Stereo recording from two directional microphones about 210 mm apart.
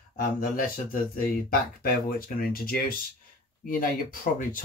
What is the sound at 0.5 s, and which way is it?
Speech, 45° left (ahead or behind).